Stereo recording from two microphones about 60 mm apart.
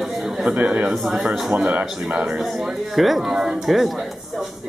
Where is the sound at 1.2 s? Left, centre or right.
Centre.